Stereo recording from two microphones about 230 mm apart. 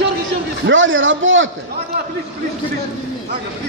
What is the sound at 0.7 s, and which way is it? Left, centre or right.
Speech, right.